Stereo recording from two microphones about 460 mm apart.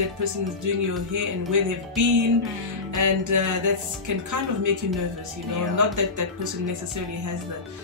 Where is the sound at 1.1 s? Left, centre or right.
Right.